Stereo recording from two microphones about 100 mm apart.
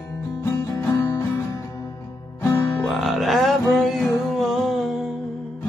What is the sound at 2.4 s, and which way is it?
Music, 25° left (ahead or behind).